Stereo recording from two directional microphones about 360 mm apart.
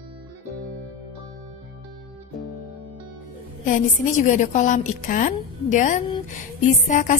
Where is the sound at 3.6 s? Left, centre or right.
Left.